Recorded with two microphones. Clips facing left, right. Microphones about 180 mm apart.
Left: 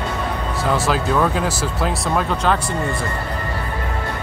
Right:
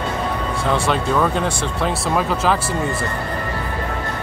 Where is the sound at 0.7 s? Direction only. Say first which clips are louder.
Even; centre (ahead or behind).